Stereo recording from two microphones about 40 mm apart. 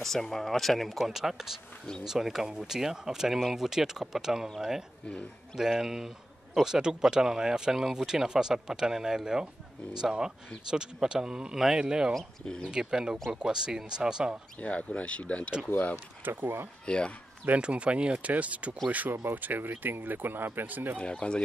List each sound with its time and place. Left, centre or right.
0.0 s speech: centre
0.9 s a man's voice: centre
10.7 s speech: centre
11.5 s a man's voice: centre
14.6 s speech: left
16.3 s speech: right
16.8 s speech: left
17.6 s speech: right
19.0 s speech: right
19.3 s speech: right
21.0 s speech: left